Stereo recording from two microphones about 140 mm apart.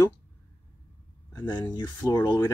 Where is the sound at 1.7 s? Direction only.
30° left (ahead or behind).